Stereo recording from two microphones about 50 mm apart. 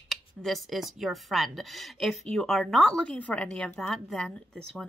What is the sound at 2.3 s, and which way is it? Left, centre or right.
Speech, centre.